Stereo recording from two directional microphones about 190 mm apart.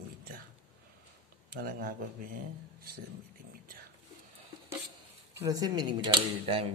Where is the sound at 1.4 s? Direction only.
50° right (ahead or behind).